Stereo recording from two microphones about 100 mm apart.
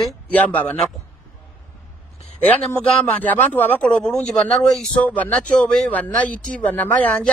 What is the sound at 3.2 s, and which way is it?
Speech, 15° left (ahead or behind).